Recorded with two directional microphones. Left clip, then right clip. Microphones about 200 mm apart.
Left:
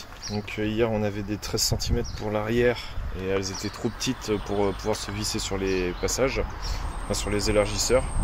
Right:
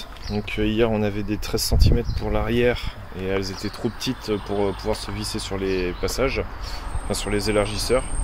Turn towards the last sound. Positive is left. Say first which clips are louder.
# right 1 dB
turn(degrees=-5)  # may be behind; listen again after turning